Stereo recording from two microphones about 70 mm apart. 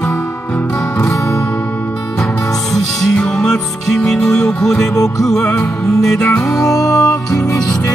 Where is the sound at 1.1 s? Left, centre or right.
Left.